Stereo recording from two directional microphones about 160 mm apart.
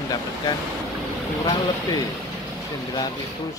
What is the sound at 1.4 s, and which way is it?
Speech, 30° left (ahead or behind).